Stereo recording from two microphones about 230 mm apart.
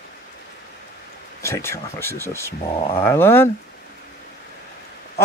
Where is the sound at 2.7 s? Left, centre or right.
Left.